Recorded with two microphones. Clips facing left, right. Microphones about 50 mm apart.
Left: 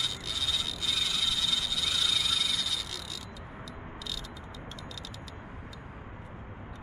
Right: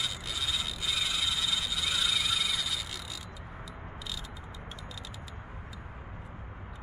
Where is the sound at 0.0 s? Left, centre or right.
Centre.